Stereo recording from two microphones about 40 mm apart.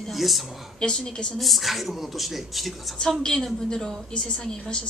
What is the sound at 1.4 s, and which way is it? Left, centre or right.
A man's voice, centre.